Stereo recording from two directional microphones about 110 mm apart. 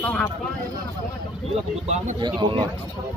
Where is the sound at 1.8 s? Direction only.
90° right.